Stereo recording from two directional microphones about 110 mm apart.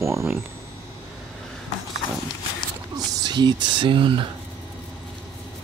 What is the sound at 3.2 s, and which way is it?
Speech, 40° right (ahead or behind).